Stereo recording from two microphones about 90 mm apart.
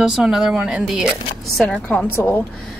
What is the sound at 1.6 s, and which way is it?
Speech, 15° left (ahead or behind).